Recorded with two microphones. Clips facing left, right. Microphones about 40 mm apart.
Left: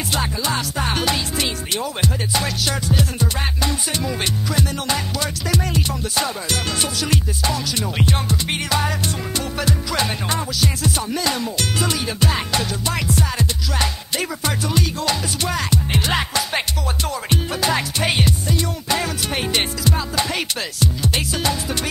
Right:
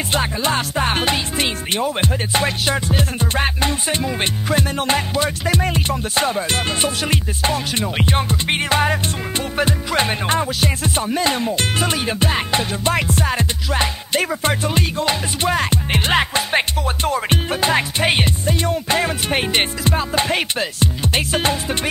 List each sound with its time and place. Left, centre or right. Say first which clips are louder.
0.1 s music: right 3 dB; right